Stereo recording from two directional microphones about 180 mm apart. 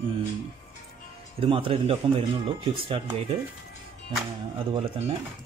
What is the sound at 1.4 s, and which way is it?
Speech, 30° right (ahead or behind).